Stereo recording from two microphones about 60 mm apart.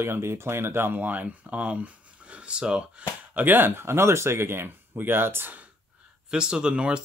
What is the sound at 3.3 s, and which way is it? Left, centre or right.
Speech, right.